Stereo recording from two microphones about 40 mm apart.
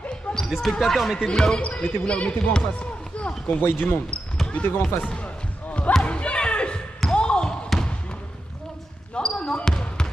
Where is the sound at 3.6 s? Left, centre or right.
Left.